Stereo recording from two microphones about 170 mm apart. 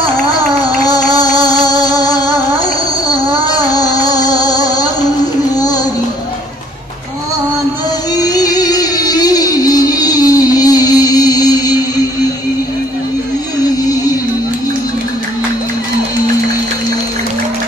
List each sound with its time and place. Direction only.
0.7 s music: 20° left (ahead or behind)
8.2 s music: 20° left (ahead or behind)